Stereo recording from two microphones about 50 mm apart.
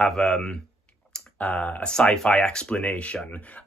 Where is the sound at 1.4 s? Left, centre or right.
Left.